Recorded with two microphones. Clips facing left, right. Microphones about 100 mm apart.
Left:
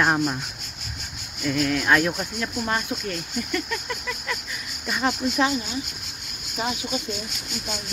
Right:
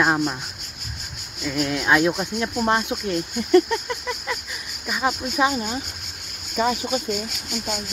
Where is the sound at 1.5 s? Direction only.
20° right (ahead or behind).